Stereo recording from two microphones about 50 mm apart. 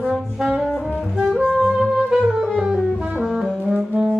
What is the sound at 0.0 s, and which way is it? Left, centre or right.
Brass instrument, centre.